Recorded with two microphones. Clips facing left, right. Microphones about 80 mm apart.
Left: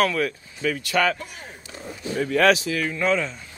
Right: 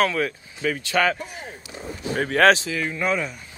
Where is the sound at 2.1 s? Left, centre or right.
Right.